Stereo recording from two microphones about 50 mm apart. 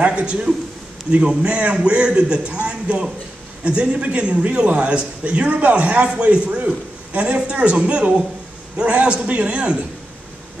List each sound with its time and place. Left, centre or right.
0.0 s a man's voice: right